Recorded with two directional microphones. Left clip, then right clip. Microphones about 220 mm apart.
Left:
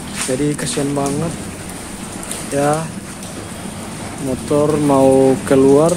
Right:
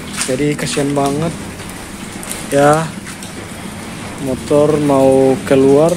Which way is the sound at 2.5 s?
15° right (ahead or behind).